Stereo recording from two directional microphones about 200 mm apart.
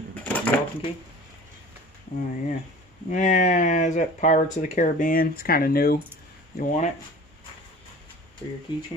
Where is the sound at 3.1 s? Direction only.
40° left (ahead or behind).